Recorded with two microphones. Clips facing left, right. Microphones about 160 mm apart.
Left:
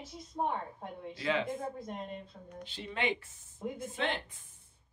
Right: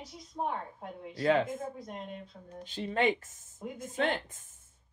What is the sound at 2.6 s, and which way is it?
Speech, 45° right (ahead or behind).